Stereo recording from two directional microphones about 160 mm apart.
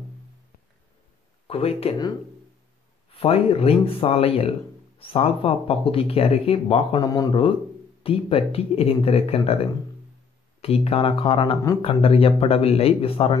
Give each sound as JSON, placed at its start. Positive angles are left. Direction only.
{"t": 1.5, "sound": "speech", "side_deg": 40}
{"t": 3.1, "sound": "speech", "side_deg": 40}